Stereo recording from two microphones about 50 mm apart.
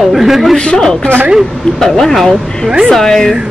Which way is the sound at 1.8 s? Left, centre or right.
Centre.